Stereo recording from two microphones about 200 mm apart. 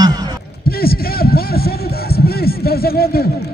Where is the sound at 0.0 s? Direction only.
20° right (ahead or behind).